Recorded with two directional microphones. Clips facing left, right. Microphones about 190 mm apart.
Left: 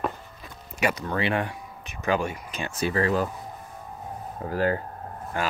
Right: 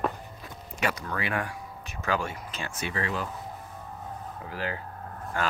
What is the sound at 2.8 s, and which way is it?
Speech, 40° left (ahead or behind).